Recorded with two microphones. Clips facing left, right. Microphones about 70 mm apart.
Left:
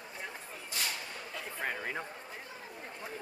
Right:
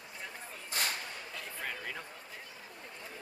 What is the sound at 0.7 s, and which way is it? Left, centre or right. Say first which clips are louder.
Whip: right 2 dB; right.